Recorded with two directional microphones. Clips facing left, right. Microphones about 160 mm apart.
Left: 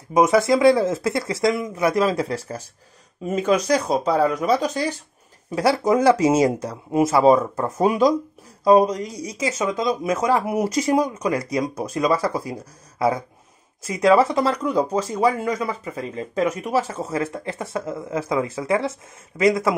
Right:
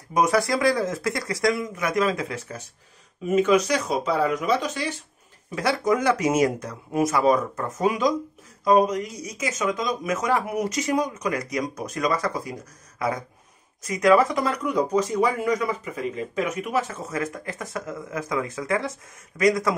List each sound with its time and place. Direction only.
0.1 s speech: 25° left (ahead or behind)
13.8 s speech: 30° left (ahead or behind)